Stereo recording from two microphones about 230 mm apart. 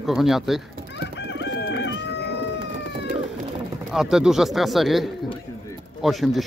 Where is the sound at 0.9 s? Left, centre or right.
Left.